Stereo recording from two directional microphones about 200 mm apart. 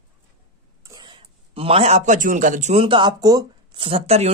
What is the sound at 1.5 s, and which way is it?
Speech, 30° right (ahead or behind).